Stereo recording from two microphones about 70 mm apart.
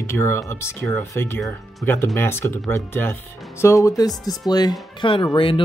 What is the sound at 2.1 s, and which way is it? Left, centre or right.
Speech, left.